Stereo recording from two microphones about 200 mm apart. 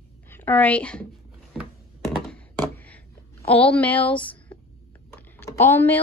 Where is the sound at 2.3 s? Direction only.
5° left (ahead or behind).